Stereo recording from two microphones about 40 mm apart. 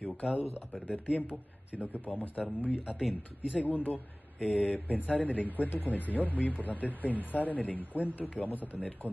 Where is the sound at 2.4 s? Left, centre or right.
Centre.